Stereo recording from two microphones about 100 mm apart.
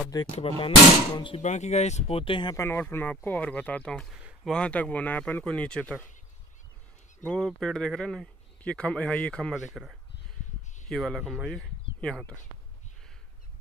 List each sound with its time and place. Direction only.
0.2 s speech: 60° left (ahead or behind)
1.7 s speech: 90° left; by 2.5 s 60° left (ahead or behind)
2.5 s speech: 30° left (ahead or behind); by 6.0 s 10° left (ahead or behind)
7.2 s speech: 5° left (ahead or behind)
9.5 s speech: 5° right (ahead or behind); by 12.4 s 10° left (ahead or behind)